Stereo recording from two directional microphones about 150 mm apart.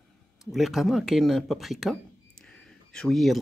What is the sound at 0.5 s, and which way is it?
Speech, centre (ahead or behind).